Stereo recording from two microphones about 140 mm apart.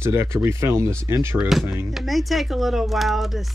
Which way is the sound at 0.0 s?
20° right (ahead or behind).